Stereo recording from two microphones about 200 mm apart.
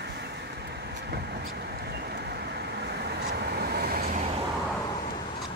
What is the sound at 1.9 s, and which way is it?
Vehicle, 55° right (ahead or behind).